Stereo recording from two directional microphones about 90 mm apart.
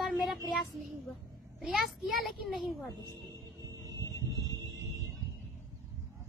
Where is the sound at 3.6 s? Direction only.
40° right (ahead or behind).